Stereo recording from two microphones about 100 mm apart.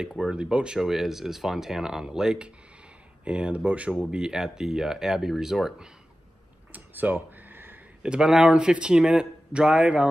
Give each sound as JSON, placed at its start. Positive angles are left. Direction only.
{"t": 0.0, "sound": "speech", "side_deg": -5}
{"t": 6.7, "sound": "a sound", "side_deg": -20}
{"t": 8.0, "sound": "speech", "side_deg": -10}